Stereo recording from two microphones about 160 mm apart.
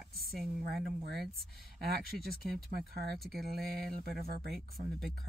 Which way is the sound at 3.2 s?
Centre (ahead or behind).